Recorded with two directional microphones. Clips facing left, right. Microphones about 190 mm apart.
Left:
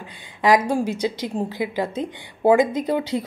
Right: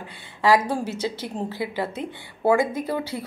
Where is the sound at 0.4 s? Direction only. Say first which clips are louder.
Left 2 dB; 15° left (ahead or behind).